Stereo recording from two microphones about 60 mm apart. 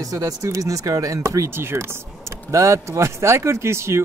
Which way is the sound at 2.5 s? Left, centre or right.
Right.